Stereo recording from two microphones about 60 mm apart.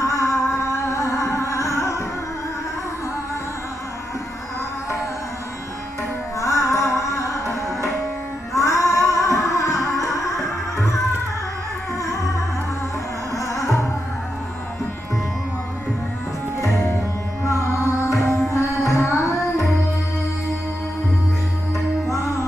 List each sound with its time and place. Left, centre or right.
0.0 s music: left
6.4 s music: left
8.5 s female singing: left
13.4 s music: left
17.6 s music: left
19.0 s music: left